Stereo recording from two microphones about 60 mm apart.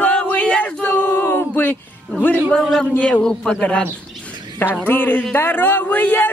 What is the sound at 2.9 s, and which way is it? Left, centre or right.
Speech, left.